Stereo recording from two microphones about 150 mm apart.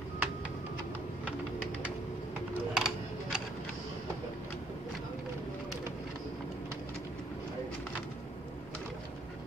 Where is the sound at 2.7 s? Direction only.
5° right (ahead or behind).